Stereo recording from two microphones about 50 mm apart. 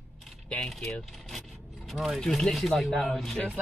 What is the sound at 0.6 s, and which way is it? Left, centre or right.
Speech, centre.